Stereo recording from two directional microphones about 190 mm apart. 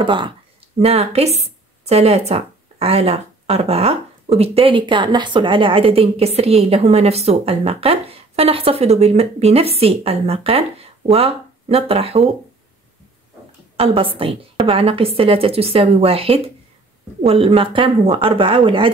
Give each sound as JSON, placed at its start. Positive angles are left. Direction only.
{"t": 0.0, "sound": "a woman's voice", "side_deg": -25}
{"t": 13.7, "sound": "a woman's voice", "side_deg": -30}